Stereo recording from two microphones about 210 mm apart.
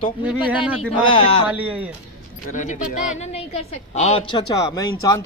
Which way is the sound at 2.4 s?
35° left (ahead or behind).